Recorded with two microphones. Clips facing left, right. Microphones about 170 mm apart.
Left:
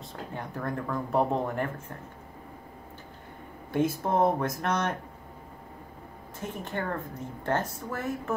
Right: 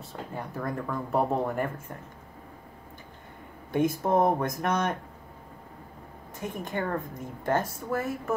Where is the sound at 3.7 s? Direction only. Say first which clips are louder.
Right 2 dB; 15° right (ahead or behind).